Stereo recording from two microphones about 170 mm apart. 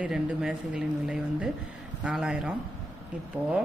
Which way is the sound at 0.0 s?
5° right (ahead or behind).